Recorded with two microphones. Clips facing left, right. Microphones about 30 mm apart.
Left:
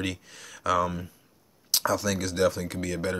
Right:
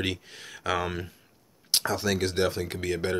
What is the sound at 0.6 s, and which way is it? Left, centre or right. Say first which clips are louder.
Speech: left 3 dB; right.